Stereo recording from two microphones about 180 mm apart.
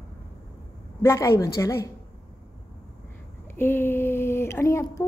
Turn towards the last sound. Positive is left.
turn(degrees=15)  # may be behind; listen again after turning